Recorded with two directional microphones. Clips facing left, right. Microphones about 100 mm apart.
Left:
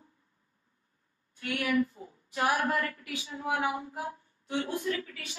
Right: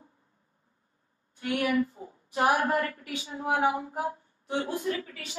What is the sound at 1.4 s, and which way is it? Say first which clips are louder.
A woman's voice: right 2 dB; 25° right (ahead or behind).